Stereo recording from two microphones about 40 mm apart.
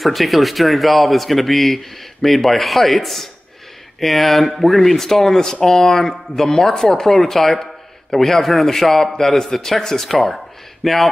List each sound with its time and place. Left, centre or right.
0.0 s speech: centre